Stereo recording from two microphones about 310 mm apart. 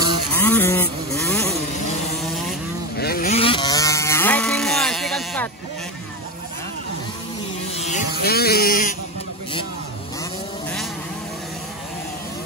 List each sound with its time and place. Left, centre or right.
0.3 s vehicle: centre
3.0 s chainsaw: left; by 5.5 s centre
7.7 s a sound: left